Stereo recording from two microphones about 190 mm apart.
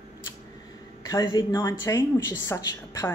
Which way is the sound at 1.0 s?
25° left (ahead or behind).